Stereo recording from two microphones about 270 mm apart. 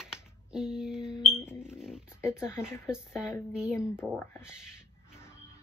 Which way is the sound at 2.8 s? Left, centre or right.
Centre.